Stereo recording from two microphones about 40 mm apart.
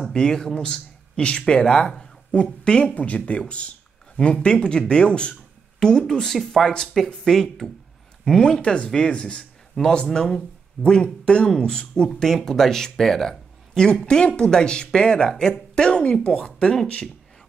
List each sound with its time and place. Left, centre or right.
0.1 s a man's voice: centre
2.9 s speech: left; by 7.7 s centre
8.4 s speech: centre
9.4 s a sound: centre
10.1 s speech: centre
12.1 s speech: centre